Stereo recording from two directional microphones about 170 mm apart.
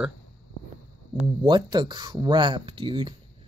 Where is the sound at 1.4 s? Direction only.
25° right (ahead or behind).